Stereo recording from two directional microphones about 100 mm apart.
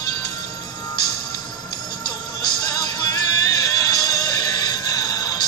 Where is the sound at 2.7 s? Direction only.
45° left (ahead or behind).